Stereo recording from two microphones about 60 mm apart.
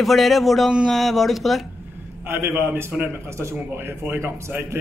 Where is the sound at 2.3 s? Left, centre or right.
Right.